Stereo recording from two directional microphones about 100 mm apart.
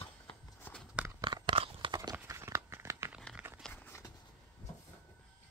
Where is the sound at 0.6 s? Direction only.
20° left (ahead or behind).